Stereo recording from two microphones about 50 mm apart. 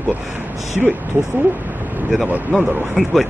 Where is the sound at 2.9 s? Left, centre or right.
Centre.